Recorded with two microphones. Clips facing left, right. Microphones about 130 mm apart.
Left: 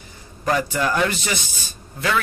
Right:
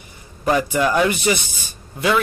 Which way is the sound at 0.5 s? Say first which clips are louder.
Right 3 dB; 10° right (ahead or behind).